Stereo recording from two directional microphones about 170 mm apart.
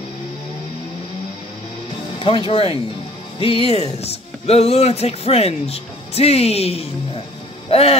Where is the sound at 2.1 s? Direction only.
30° left (ahead or behind).